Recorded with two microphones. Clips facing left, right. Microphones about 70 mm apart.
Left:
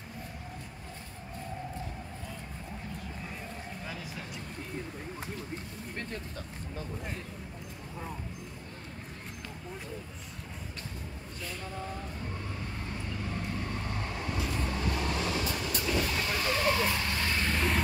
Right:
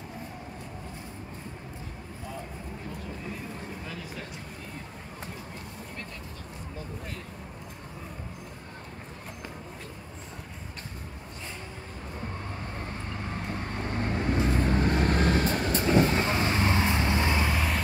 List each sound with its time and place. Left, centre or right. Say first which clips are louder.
13.3 s vehicle: right 2 dB; right
17.5 s vehicle: right 1 dB; centre